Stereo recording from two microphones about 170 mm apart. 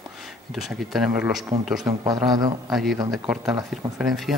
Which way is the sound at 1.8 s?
20° right (ahead or behind).